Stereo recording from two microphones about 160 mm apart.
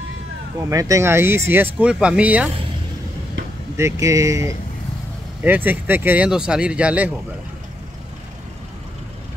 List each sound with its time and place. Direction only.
0.6 s speech: 20° right (ahead or behind)
3.7 s speech: 20° right (ahead or behind)